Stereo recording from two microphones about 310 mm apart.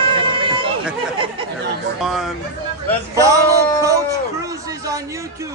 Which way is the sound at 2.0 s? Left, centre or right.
Centre.